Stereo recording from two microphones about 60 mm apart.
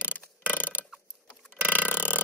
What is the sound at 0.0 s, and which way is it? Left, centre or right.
Mechanisms, right.